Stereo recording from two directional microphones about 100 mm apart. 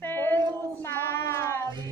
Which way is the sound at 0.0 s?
20° left (ahead or behind).